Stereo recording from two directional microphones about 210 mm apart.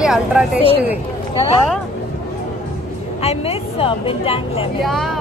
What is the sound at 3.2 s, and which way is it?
A woman's voice, 30° left (ahead or behind).